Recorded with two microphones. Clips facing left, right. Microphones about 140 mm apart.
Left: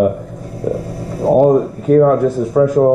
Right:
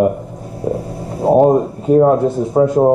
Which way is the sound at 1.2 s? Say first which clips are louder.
Even; 30° right (ahead or behind).